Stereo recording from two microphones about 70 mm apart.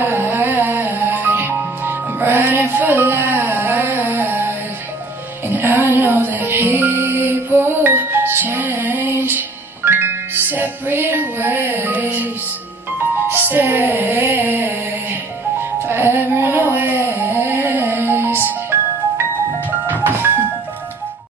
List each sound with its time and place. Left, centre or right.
0.3 s music: right
13.3 s music: right
15.9 s a sound: right
19.9 s music: right